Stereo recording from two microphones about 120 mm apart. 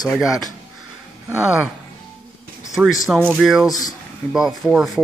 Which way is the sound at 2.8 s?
Centre (ahead or behind).